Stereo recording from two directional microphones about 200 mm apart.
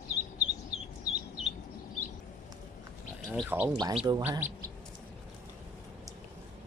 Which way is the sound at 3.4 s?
10° right (ahead or behind).